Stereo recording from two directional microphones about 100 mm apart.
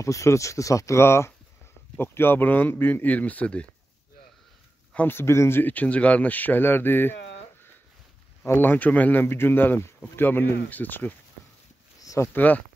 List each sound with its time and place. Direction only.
0.0 s speech: 30° left (ahead or behind); by 3.6 s 15° left (ahead or behind)
4.9 s speech: 20° left (ahead or behind)
8.5 s speech: 20° left (ahead or behind)
12.0 s a sound: 35° left (ahead or behind)
12.4 s speech: 15° left (ahead or behind)